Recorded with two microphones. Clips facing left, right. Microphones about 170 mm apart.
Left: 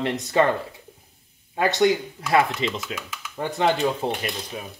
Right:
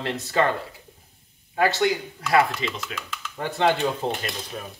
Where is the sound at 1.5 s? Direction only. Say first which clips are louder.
Left 2 dB; 25° left (ahead or behind).